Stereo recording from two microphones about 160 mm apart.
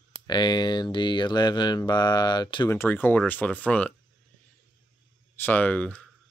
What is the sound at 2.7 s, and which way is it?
Speech, 15° left (ahead or behind).